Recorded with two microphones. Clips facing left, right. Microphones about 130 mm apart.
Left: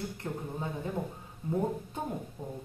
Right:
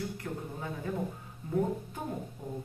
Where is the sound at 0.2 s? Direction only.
20° left (ahead or behind).